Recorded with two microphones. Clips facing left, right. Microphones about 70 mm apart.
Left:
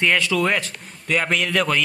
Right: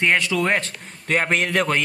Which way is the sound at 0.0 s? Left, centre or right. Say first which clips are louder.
Even; right.